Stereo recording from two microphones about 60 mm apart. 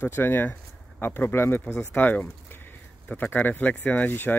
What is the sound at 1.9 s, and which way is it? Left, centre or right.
Speech, left.